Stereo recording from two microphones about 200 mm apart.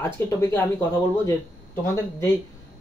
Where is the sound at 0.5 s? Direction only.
10° left (ahead or behind).